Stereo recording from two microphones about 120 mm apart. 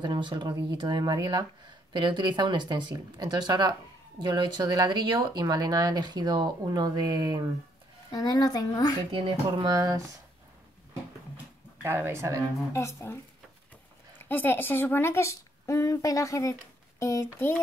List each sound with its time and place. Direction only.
0.0 s speech: 40° right (ahead or behind)
8.1 s speech: 35° left (ahead or behind)
9.1 s speech: 45° right (ahead or behind)
9.7 s speech: 30° right (ahead or behind)
11.8 s speech: 20° right (ahead or behind)
12.7 s a woman's voice: 20° left (ahead or behind)